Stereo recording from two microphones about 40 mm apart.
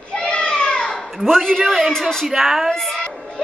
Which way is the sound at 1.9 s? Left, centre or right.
Centre.